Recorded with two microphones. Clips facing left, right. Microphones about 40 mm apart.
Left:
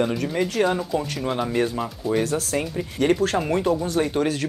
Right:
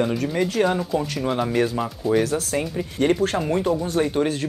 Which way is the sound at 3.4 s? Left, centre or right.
Centre.